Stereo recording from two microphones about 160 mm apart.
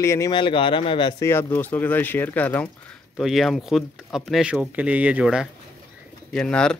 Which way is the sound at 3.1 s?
Centre (ahead or behind).